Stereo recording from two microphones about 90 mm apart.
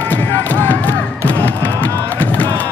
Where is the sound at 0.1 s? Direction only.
20° left (ahead or behind).